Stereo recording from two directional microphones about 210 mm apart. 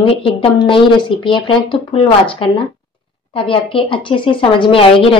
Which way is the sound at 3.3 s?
25° left (ahead or behind).